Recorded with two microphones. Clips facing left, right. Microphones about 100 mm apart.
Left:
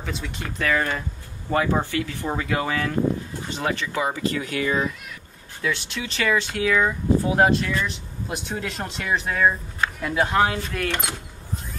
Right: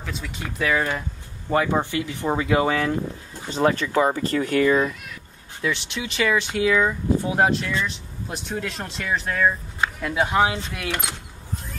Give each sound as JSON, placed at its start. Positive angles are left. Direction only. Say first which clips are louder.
{"t": 0.0, "sound": "speech", "louder": "left 1 dB", "side_deg": 0}
{"t": 1.5, "sound": "speech", "louder": "right 1 dB", "side_deg": -20}
{"t": 3.4, "sound": "speech", "louder": "right 7 dB", "side_deg": -35}
{"t": 5.6, "sound": "speech", "louder": "right 1 dB", "side_deg": -15}
{"t": 10.0, "sound": "speech", "louder": "even", "side_deg": -5}